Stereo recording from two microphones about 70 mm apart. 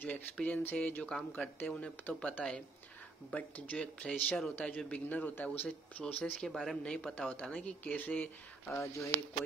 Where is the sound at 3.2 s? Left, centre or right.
Centre.